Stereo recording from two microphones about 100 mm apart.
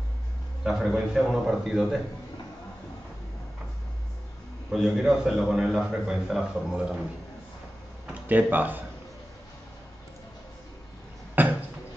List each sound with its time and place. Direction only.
0.7 s a man's voice: 5° right (ahead or behind)
4.7 s a man's voice: 5° right (ahead or behind)
8.1 s speech: 15° right (ahead or behind)
11.4 s a sound: 20° right (ahead or behind)